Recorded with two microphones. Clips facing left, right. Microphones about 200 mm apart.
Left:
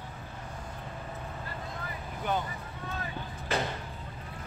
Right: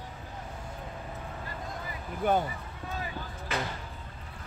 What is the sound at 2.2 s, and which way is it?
Speech, 50° right (ahead or behind).